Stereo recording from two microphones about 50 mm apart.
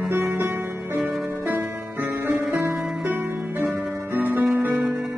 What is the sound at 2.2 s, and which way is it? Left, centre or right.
Music, right.